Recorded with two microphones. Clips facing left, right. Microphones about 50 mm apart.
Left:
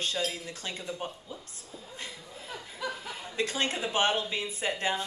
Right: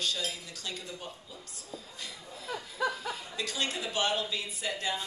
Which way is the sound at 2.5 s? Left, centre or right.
Right.